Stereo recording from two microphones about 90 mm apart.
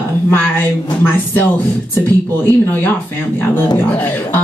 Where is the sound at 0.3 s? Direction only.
20° left (ahead or behind).